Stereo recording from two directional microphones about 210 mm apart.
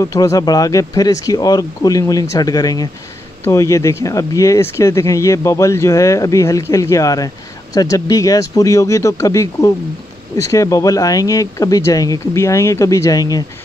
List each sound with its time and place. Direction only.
0.0 s speech: 15° left (ahead or behind)